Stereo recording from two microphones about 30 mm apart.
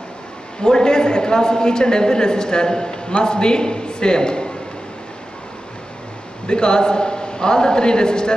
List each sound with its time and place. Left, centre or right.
0.6 s a woman's voice: left
6.4 s a man's voice: left